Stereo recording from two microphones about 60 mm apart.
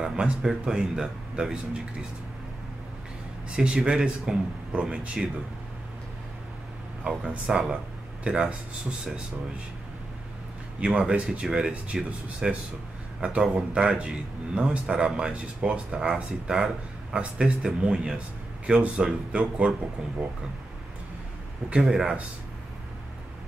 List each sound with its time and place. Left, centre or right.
0.0 s a man's voice: centre
3.5 s a man's voice: centre
7.1 s speech: centre
10.8 s a man's voice: centre
21.6 s a man's voice: centre